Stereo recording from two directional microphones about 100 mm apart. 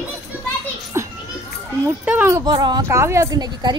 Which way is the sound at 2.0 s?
20° right (ahead or behind).